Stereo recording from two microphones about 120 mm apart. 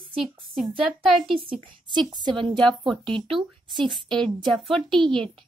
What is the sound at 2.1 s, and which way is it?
Speech, 35° right (ahead or behind).